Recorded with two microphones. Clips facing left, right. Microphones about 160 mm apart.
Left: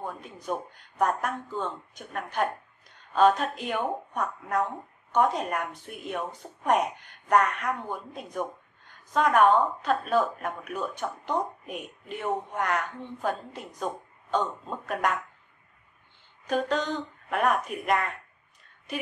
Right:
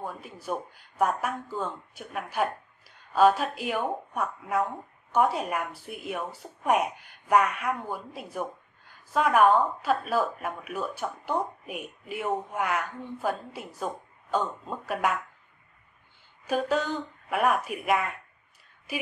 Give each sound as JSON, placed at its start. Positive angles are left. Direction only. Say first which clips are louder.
{"t": 0.0, "sound": "a woman's voice", "louder": "even", "side_deg": -5}
{"t": 16.4, "sound": "a woman's voice", "louder": "even", "side_deg": -5}